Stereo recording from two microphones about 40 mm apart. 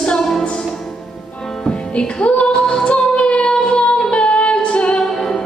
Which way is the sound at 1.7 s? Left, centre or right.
Left.